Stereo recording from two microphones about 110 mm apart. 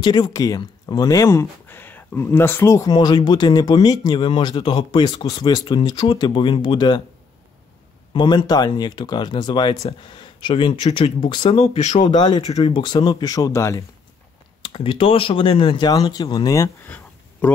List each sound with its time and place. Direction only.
0.0 s speech: 40° left (ahead or behind)
2.9 s speech: 40° left (ahead or behind)
8.1 s speech: 45° left (ahead or behind)
11.5 s speech: 80° left
12.2 s speech: 40° left (ahead or behind)
14.7 s speech: 55° left (ahead or behind)
15.8 s speech: 40° left (ahead or behind)